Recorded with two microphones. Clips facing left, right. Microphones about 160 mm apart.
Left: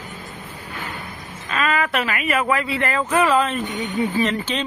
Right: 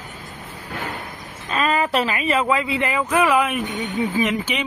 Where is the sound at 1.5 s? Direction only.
35° right (ahead or behind).